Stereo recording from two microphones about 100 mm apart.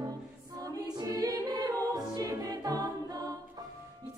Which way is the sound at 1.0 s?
40° right (ahead or behind).